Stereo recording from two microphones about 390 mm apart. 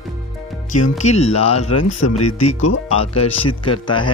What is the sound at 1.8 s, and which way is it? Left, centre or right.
Speech, left.